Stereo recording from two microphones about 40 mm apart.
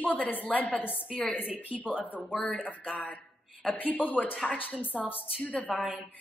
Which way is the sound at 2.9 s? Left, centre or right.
Left.